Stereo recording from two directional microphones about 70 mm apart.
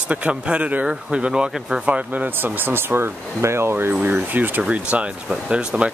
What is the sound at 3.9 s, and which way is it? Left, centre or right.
Speech, right.